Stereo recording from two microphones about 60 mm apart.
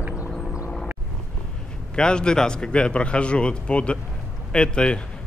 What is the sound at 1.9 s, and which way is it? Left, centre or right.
A man's voice, centre.